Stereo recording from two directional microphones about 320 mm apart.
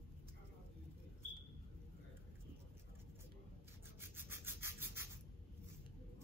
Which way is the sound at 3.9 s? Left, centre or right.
Centre.